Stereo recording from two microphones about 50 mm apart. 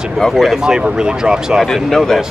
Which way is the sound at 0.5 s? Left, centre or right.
Centre.